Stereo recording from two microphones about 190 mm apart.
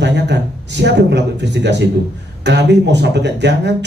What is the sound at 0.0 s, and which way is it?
Speech, 65° right (ahead or behind).